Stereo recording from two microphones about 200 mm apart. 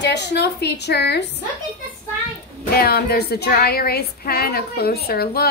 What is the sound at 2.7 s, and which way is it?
Speech, 50° left (ahead or behind).